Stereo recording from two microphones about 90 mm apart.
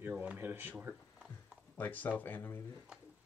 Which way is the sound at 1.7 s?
20° left (ahead or behind).